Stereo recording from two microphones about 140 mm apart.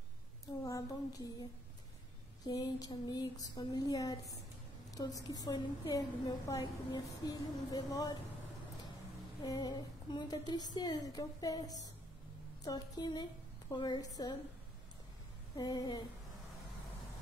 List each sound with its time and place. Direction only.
0.7 s a woman's voice: 25° left (ahead or behind)
2.4 s a woman's voice: 30° left (ahead or behind)
9.4 s a woman's voice: 30° left (ahead or behind)
15.5 s a woman's voice: 25° left (ahead or behind)